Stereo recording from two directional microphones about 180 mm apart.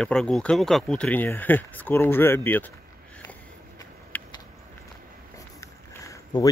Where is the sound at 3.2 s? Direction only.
10° left (ahead or behind).